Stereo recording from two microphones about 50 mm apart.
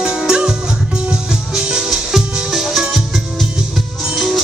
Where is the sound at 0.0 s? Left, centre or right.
Centre.